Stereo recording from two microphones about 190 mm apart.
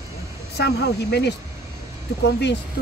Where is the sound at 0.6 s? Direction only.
60° left (ahead or behind).